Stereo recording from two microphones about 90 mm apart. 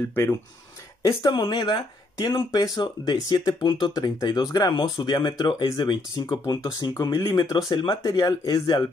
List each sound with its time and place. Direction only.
0.1 s speech: 30° left (ahead or behind)
1.0 s speech: 55° left (ahead or behind)
2.6 s speech: 50° left (ahead or behind)
4.7 s speech: 60° left (ahead or behind)
6.2 s speech: 35° left (ahead or behind)
7.3 s speech: 45° left (ahead or behind)